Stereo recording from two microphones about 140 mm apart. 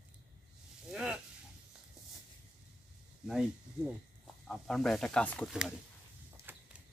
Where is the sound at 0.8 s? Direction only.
5° right (ahead or behind).